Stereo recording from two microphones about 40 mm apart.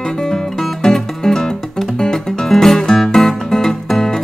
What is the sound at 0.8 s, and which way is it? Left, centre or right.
Music, centre.